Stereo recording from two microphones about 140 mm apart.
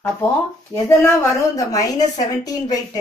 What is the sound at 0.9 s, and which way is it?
A woman's voice, 20° left (ahead or behind).